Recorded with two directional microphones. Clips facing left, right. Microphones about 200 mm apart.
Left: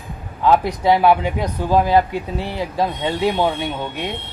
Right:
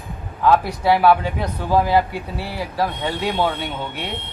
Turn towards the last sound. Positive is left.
turn(degrees=15)  # may be behind; listen again after turning